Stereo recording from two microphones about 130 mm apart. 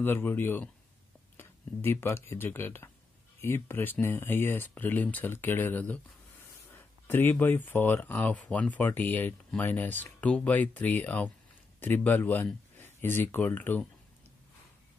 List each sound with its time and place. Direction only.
0.0 s speech: 15° left (ahead or behind)